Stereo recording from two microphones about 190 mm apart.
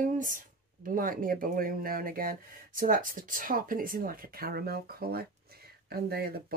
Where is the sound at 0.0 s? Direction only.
45° right (ahead or behind).